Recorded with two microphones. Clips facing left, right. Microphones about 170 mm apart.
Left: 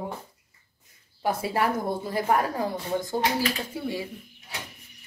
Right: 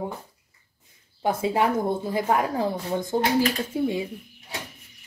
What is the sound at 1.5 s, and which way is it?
Speech, 20° right (ahead or behind).